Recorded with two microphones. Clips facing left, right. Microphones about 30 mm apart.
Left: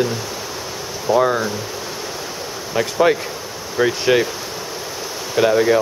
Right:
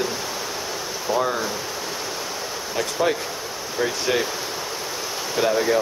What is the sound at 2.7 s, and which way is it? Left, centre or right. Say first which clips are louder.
Speech: left 7 dB; left.